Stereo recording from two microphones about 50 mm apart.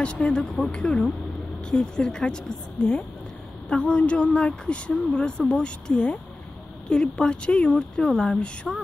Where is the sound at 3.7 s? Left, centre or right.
Left.